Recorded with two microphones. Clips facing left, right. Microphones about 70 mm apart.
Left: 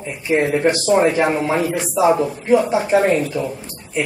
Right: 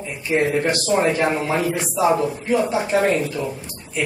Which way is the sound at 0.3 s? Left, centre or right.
Centre.